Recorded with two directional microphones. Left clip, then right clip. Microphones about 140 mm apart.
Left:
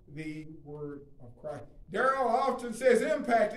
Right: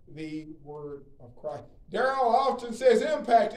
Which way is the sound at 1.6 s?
20° right (ahead or behind).